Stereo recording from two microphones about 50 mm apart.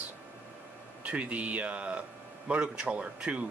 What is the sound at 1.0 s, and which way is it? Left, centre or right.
Speech, right.